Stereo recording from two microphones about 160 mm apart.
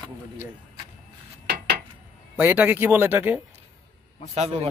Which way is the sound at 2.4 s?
10° right (ahead or behind).